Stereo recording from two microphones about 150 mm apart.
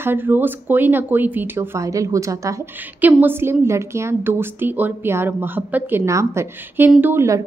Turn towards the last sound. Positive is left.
turn(degrees=-15)  # may be behind; listen again after turning